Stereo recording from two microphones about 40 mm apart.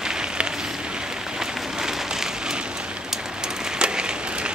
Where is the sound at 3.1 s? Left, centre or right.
Centre.